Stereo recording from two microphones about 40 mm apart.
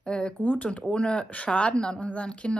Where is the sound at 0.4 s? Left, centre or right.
Left.